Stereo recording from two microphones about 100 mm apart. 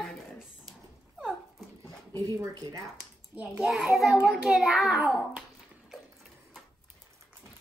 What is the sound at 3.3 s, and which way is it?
A child's voice, 15° right (ahead or behind).